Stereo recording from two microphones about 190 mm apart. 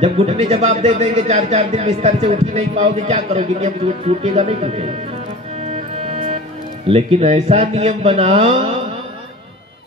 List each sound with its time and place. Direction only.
0.0 s a man's voice: 30° right (ahead or behind)
5.7 s music: 35° right (ahead or behind)
6.9 s a man's voice: 30° right (ahead or behind)